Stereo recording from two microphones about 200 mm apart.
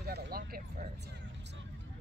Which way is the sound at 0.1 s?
50° right (ahead or behind).